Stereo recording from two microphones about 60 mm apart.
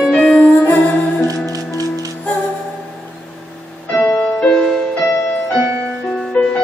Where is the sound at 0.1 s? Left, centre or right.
Centre.